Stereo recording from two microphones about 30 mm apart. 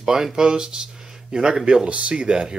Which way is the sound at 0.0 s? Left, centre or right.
Right.